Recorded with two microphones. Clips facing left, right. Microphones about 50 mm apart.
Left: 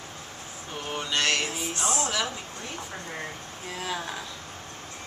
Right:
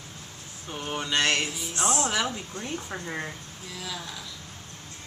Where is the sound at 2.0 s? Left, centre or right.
Right.